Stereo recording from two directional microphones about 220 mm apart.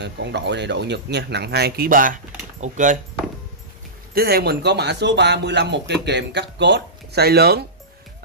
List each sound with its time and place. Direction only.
0.0 s speech: 50° right (ahead or behind); by 3.0 s 35° right (ahead or behind)
4.1 s speech: 45° right (ahead or behind)